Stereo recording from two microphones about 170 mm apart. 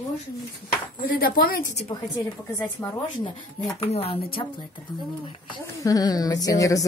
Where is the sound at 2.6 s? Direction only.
10° left (ahead or behind).